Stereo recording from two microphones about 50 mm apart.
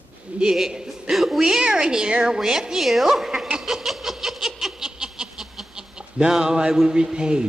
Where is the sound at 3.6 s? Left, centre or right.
Centre.